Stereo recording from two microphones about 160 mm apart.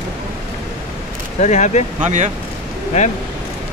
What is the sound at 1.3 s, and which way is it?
Speech, 45° left (ahead or behind).